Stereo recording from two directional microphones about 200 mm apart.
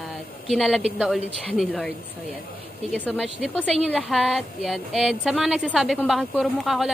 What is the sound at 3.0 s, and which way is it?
A woman's voice, centre (ahead or behind).